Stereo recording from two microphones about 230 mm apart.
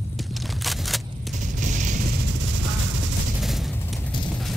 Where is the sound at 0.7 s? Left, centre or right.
Centre.